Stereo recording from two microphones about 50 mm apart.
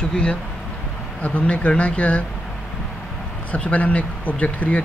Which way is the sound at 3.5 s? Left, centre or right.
Left.